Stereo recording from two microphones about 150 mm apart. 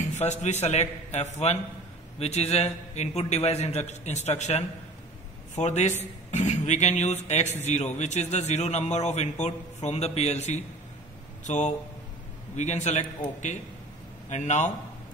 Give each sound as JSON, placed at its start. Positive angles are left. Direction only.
{"t": 0.0, "sound": "a man's voice", "side_deg": 50}
{"t": 14.3, "sound": "a man's voice", "side_deg": 50}